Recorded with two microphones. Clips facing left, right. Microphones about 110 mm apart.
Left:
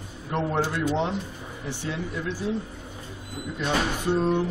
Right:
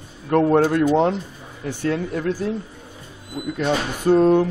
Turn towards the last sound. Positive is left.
turn(degrees=-50)  # may be behind; listen again after turning